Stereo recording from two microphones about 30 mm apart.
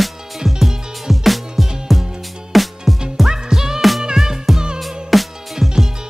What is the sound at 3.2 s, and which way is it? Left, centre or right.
Music, centre.